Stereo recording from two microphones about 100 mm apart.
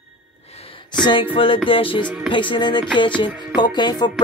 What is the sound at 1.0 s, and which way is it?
Music, 55° left (ahead or behind).